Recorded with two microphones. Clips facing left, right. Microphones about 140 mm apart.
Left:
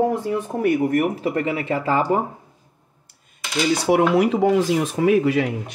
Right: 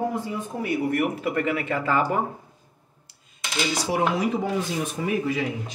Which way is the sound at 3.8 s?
65° left (ahead or behind).